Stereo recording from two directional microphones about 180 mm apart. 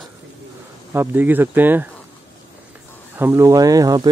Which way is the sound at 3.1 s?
15° right (ahead or behind).